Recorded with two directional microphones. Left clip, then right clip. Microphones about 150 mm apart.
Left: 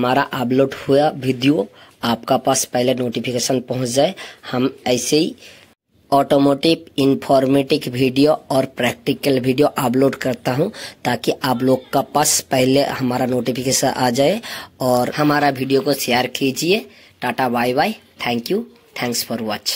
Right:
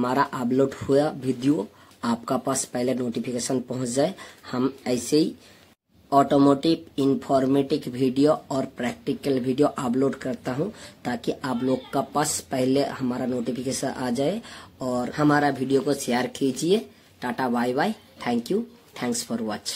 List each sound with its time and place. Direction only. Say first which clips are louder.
0.0 s speech: left 6 dB; 25° left (ahead or behind)
6.0 s speech: left 4 dB; 40° left (ahead or behind)
15.1 s speech: left 5 dB; 30° left (ahead or behind)